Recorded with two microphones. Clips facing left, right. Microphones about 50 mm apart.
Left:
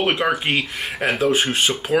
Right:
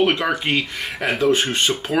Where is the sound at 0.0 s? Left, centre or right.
Centre.